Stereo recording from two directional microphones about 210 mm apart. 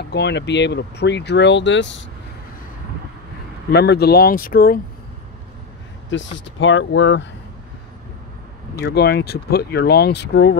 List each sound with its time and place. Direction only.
0.1 s speech: 55° left (ahead or behind)
3.7 s speech: 50° left (ahead or behind)
6.0 s speech: 60° left (ahead or behind)
8.8 s speech: 50° left (ahead or behind)